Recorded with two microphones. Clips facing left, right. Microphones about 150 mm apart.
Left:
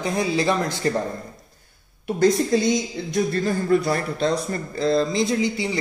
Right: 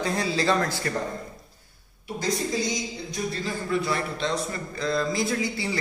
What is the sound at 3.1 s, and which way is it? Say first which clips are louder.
Speech: left 9 dB; 50° left (ahead or behind).